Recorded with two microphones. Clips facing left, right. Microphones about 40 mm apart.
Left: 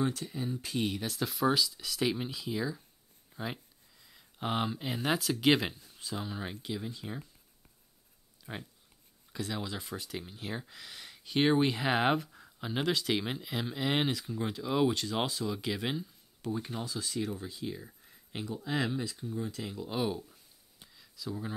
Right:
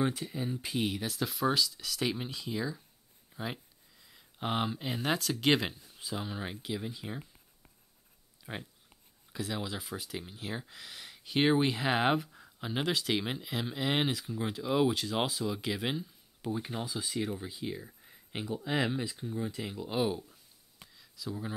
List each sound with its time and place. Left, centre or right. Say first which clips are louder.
0.0 s speech: right 1 dB; centre
0.7 s speech: even; centre
18.0 s a sound: left 1 dB; centre
18.6 s speech: right 1 dB; centre
18.9 s speech: right 1 dB; right
20.9 s a sound: even; centre